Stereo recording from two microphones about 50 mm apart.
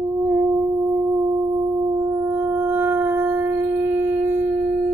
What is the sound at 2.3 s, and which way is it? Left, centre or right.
Music, right.